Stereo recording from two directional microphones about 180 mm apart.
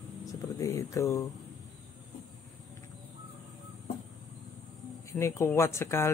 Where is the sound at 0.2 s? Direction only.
20° left (ahead or behind).